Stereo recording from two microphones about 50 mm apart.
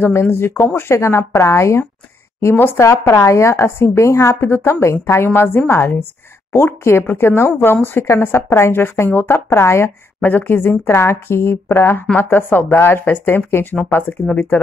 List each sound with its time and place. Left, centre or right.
0.1 s a woman's voice: left
2.4 s speech: left
2.8 s a woman's voice: left
8.0 s a woman's voice: left
8.7 s a woman's voice: left
10.2 s speech: left
10.9 s a woman's voice: left
12.2 s speech: left